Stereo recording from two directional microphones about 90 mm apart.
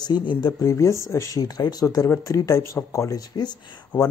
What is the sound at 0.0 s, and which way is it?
Speech, 60° left (ahead or behind).